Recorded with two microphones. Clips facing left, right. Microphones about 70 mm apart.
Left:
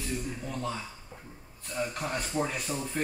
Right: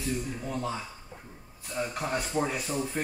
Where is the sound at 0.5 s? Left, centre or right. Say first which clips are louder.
Right 2 dB; centre.